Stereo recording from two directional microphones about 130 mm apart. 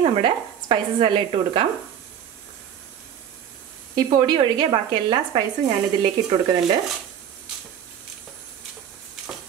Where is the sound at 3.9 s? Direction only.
35° right (ahead or behind).